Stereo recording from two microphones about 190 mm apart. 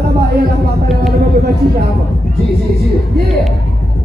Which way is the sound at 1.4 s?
55° right (ahead or behind).